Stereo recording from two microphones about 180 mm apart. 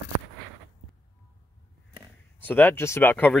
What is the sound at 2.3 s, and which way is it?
Speech, 10° left (ahead or behind).